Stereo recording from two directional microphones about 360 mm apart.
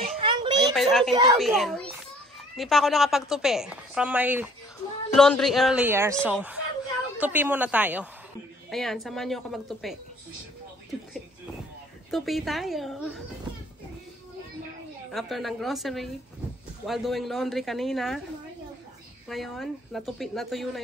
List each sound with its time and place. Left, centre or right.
0.2 s a sound: centre
0.7 s a woman's voice: centre
12.1 s a woman's voice: centre
15.0 s a woman's voice: centre
19.2 s a woman's voice: centre